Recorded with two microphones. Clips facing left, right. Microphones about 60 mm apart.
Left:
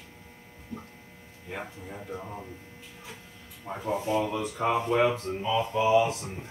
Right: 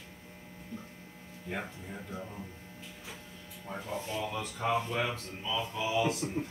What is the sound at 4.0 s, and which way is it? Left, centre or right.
Speech, left.